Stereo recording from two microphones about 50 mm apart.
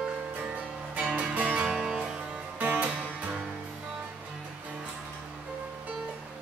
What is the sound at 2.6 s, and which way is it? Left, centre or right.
Music, right.